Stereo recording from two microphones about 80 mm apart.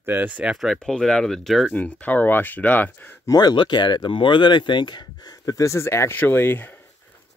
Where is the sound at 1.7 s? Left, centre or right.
Centre.